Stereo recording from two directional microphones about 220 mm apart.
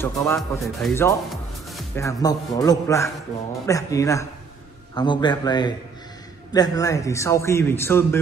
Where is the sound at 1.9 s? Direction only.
15° left (ahead or behind).